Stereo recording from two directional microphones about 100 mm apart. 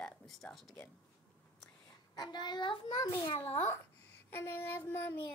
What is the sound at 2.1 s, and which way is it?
Speech, 45° left (ahead or behind).